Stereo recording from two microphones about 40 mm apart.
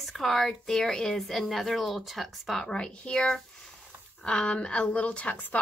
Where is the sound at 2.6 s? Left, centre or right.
Centre.